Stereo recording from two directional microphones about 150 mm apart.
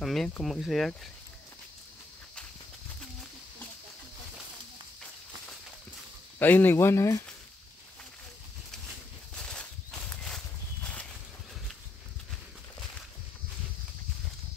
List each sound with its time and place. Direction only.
0.0 s speech: centre (ahead or behind)
6.4 s speech: 15° left (ahead or behind)
9.3 s a sound: 5° left (ahead or behind)